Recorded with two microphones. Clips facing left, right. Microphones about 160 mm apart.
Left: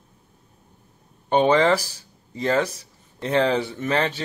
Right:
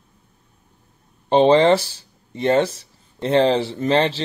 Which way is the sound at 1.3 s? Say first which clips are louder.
Right 4 dB; 25° right (ahead or behind).